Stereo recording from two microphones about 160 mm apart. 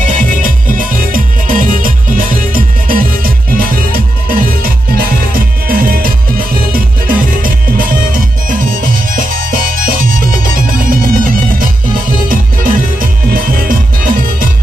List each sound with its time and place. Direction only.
0.0 s music: 55° right (ahead or behind)